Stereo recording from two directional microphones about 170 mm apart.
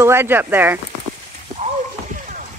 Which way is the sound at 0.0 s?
15° right (ahead or behind).